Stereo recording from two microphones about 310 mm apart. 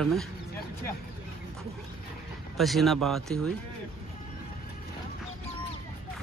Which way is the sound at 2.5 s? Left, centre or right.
Centre.